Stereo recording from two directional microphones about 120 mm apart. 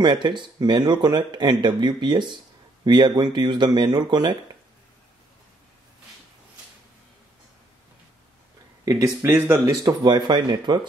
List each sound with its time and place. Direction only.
0.0 s speech: 40° right (ahead or behind)
8.8 s speech: 30° right (ahead or behind)
9.2 s speech: 15° right (ahead or behind)
9.7 s speech: 35° right (ahead or behind)